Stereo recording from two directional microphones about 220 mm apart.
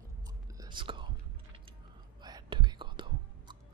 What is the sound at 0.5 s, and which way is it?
Whispering, 20° right (ahead or behind).